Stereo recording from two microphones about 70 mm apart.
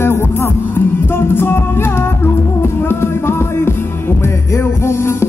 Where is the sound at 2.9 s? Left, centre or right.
Left.